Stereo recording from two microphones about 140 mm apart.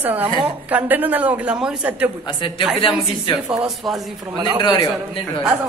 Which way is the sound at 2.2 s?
35° left (ahead or behind).